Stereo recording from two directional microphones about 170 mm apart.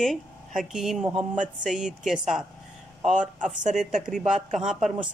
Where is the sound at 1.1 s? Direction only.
45° right (ahead or behind).